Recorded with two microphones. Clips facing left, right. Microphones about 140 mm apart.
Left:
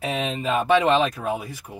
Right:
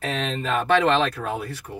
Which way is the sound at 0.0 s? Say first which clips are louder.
Left 1 dB; 10° left (ahead or behind).